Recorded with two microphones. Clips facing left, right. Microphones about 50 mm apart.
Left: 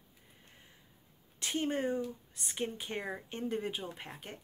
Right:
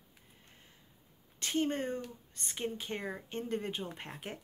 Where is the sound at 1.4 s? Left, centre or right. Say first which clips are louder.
Even; centre.